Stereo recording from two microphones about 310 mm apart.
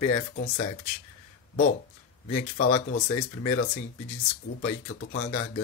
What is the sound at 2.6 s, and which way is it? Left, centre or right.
Speech, left.